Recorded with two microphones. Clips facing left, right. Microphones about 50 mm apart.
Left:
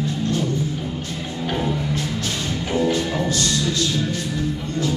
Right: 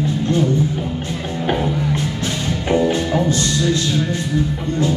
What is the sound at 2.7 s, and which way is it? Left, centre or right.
Music, right.